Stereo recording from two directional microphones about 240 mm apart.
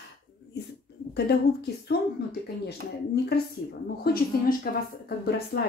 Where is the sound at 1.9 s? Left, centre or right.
Left.